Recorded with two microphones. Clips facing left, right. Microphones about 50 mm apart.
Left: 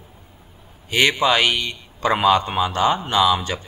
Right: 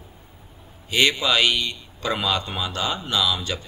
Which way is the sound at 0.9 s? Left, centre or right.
Left.